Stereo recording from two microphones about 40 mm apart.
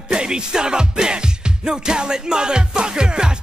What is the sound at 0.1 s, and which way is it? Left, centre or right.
Music, right.